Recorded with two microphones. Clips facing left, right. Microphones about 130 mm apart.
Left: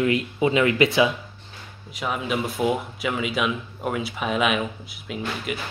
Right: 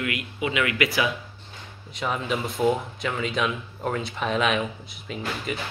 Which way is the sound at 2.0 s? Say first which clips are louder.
Left 1 dB; 5° left (ahead or behind).